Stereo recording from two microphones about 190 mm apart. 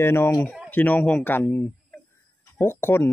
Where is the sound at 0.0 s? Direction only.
15° left (ahead or behind).